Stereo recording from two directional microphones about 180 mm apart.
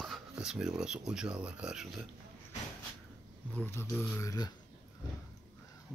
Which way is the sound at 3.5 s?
10° left (ahead or behind).